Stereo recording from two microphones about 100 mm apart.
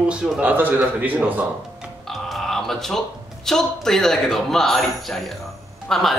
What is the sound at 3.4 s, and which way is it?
Speech, 5° left (ahead or behind).